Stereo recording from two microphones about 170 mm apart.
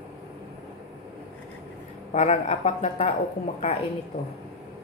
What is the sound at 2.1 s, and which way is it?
Speech, 40° left (ahead or behind).